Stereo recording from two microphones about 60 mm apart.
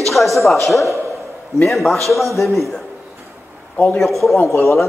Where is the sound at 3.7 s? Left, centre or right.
Left.